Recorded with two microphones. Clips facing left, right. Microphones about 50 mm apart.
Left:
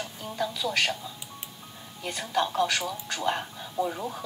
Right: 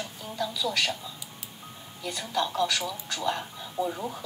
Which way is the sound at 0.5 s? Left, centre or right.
Left.